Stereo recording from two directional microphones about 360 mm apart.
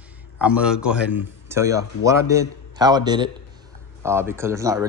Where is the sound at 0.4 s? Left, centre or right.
Centre.